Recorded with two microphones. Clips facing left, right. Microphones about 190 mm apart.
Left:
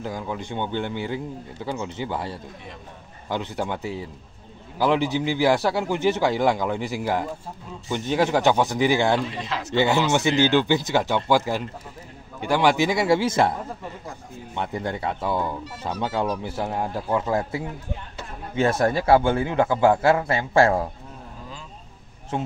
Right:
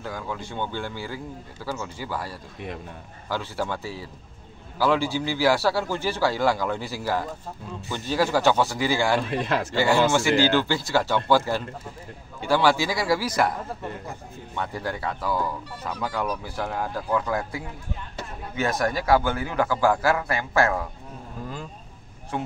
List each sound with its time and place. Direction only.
0.0 s speech: 20° left (ahead or behind)
9.3 s a man's voice: 55° right (ahead or behind)
9.7 s speech: 20° left (ahead or behind)
22.3 s speech: 25° left (ahead or behind)